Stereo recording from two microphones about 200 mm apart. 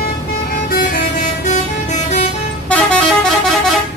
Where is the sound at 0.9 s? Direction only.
40° left (ahead or behind).